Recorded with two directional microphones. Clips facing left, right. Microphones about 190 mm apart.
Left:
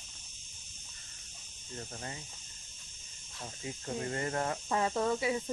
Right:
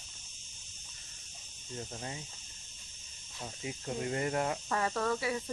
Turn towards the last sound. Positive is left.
turn(degrees=20)  # may be behind; listen again after turning